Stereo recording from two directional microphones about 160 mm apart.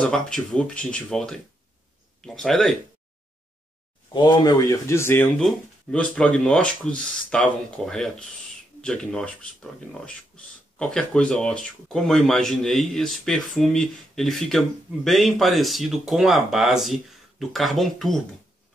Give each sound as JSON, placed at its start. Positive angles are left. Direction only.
{"t": 0.0, "sound": "speech", "side_deg": 5}
{"t": 4.1, "sound": "speech", "side_deg": 25}